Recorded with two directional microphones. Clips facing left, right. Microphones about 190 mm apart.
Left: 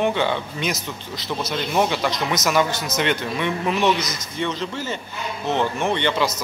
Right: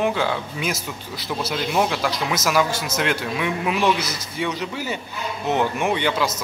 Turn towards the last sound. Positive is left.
turn(degrees=-5)  # may be behind; listen again after turning